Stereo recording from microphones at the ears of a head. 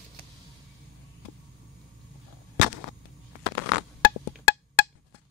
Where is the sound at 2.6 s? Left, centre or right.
Left.